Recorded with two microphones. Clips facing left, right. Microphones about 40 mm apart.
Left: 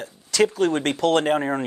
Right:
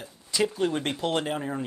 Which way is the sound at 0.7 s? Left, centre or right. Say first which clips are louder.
Left 7 dB; left.